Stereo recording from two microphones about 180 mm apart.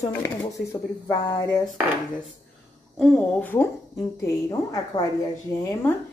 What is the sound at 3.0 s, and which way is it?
Speech, 5° left (ahead or behind).